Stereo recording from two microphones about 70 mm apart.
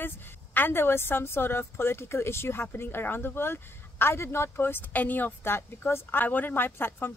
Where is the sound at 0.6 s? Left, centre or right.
Left.